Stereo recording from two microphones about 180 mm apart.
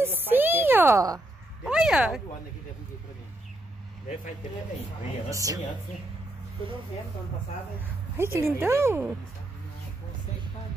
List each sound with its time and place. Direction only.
0.3 s a sound: 10° right (ahead or behind)
1.6 s speech: centre (ahead or behind)
5.3 s a woman's voice: 20° right (ahead or behind)
8.2 s a woman's voice: 15° right (ahead or behind)